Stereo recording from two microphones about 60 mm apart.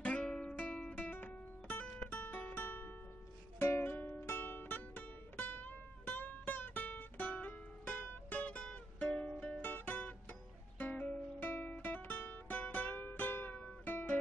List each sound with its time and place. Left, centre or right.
0.0 s guitar: centre
0.9 s music: left; by 9.6 s centre
9.6 s music: left
12.5 s music: left
13.5 s music: left